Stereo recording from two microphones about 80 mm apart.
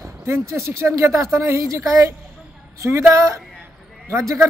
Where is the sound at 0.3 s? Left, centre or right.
Right.